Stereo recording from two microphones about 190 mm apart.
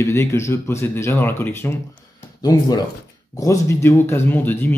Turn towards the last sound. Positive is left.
turn(degrees=10)  # may be behind; listen again after turning